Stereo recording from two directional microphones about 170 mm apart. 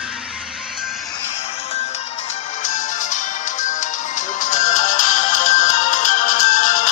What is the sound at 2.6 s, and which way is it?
Music, 50° left (ahead or behind).